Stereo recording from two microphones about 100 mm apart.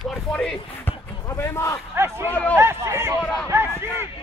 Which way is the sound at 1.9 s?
25° right (ahead or behind).